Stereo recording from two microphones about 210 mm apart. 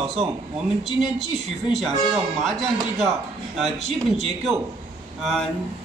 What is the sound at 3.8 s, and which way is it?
Speech, 30° right (ahead or behind).